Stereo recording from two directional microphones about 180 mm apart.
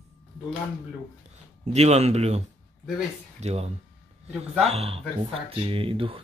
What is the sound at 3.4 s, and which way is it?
Speech, 35° right (ahead or behind).